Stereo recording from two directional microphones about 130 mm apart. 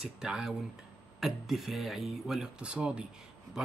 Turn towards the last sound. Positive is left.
turn(degrees=-5)  # may be behind; listen again after turning